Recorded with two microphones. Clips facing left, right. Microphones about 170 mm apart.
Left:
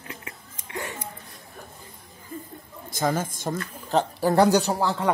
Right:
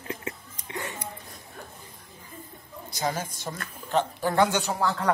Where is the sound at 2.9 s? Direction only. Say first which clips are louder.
Left 4 dB; 50° left (ahead or behind).